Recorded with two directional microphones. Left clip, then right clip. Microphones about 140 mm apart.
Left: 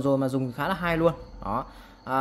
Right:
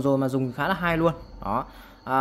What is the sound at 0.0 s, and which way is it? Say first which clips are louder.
Speech: right 1 dB; 10° right (ahead or behind).